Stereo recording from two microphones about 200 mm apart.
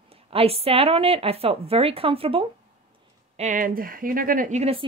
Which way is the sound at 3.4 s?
40° right (ahead or behind).